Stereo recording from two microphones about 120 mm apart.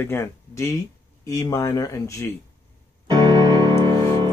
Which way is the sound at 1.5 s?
25° left (ahead or behind).